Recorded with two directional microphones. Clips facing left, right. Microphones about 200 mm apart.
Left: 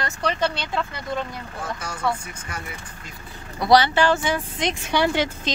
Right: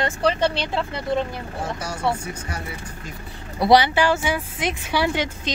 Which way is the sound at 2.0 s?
30° right (ahead or behind).